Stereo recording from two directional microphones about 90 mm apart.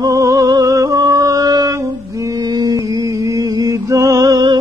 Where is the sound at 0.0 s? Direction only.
35° right (ahead or behind).